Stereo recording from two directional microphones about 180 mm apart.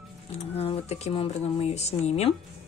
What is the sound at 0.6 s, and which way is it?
Speech, 35° left (ahead or behind).